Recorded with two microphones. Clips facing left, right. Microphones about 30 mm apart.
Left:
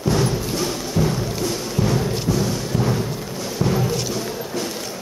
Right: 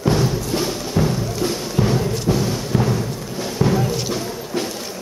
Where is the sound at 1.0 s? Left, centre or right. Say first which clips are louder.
Right 2 dB; centre.